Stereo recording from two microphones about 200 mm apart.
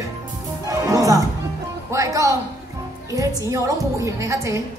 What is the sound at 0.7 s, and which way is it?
Music, 15° right (ahead or behind).